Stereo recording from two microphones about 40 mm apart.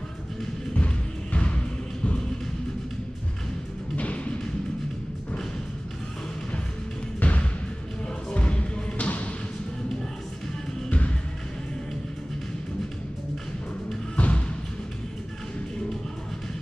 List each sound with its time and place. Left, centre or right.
0.7 s music: left
3.9 s music: left
7.2 s music: left
8.3 s basketball bounce: left
14.1 s music: left